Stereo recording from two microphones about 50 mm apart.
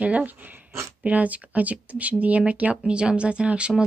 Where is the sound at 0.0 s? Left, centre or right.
Right.